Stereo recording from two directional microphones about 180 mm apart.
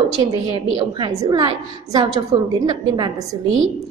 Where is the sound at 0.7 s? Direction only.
25° right (ahead or behind).